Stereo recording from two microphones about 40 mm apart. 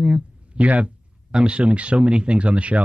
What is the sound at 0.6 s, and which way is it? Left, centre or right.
Speech, right.